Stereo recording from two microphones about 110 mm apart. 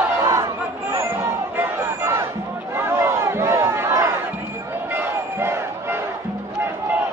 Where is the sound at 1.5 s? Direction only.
20° right (ahead or behind).